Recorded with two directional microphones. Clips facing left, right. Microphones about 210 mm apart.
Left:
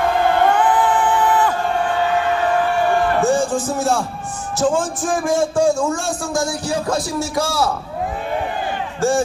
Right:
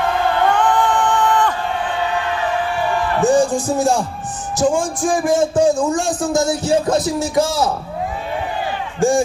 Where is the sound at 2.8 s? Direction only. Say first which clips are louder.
Left 3 dB; 50° left (ahead or behind).